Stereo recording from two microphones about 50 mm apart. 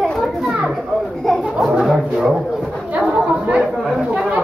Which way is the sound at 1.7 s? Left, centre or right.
Centre.